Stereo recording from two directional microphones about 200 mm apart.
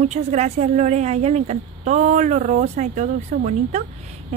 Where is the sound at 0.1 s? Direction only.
35° right (ahead or behind).